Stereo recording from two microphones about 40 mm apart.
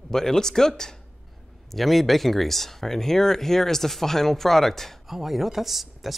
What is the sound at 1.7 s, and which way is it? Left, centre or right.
Speech, centre.